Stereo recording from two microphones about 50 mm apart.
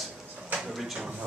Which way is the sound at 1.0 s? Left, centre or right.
Centre.